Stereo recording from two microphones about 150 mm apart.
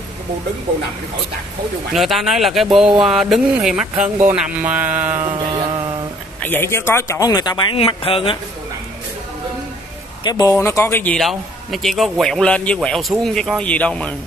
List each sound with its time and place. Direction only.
2.0 s speech: centre (ahead or behind)
4.3 s a sound: 10° right (ahead or behind)
5.2 s a sound: 35° right (ahead or behind)
6.4 s a man's voice: 15° left (ahead or behind); by 8.4 s 35° left (ahead or behind)
10.2 s a man's voice: 25° left (ahead or behind)
11.1 s speech: centre (ahead or behind)